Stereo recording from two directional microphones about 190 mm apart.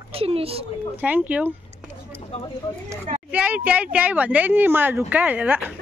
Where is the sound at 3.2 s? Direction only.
5° right (ahead or behind).